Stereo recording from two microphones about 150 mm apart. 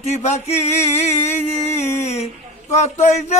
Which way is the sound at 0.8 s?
45° left (ahead or behind).